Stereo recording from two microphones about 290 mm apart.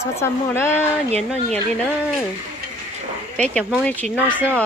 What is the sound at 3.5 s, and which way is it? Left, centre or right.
Speech, centre.